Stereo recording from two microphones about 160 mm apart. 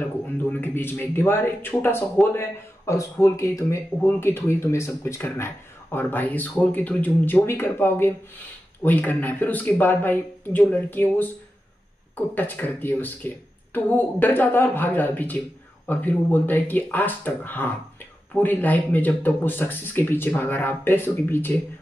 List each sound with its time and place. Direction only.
0.5 s speech: 15° left (ahead or behind)
12.4 s speech: 10° left (ahead or behind)